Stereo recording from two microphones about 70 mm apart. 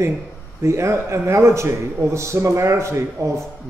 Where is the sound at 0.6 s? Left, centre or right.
Right.